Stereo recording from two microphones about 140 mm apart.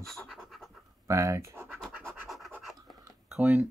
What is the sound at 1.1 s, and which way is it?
Speech, 25° right (ahead or behind).